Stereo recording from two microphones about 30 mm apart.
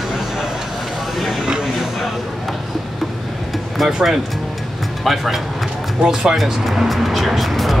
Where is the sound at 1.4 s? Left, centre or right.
Right.